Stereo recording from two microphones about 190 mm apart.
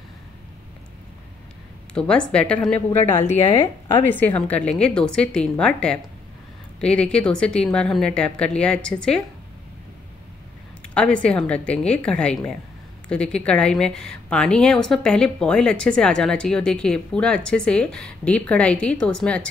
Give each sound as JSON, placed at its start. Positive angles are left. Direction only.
{"t": 2.0, "sound": "a woman's voice", "side_deg": 5}
{"t": 3.0, "sound": "speech", "side_deg": 35}
{"t": 4.1, "sound": "a woman's voice", "side_deg": 10}
{"t": 11.0, "sound": "a woman's voice", "side_deg": 5}